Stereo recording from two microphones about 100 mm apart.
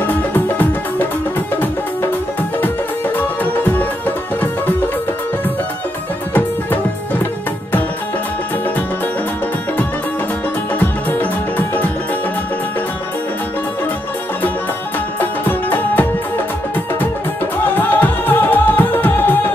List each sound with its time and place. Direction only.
0.0 s music: 20° left (ahead or behind)
3.2 s music: 20° left (ahead or behind)
10.7 s music: 20° left (ahead or behind)
15.1 s music: 20° left (ahead or behind)
17.7 s music: 20° left (ahead or behind)